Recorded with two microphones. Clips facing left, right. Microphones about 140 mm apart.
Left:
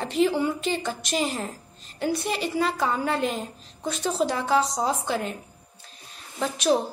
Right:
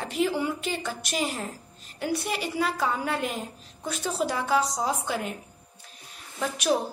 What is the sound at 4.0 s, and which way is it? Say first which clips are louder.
Speech: left 3 dB; 20° left (ahead or behind).